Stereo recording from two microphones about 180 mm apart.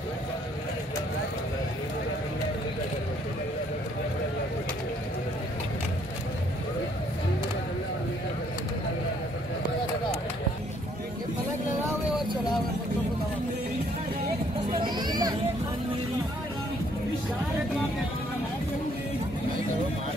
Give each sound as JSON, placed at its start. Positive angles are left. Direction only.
{"t": 14.7, "sound": "children playing", "side_deg": -25}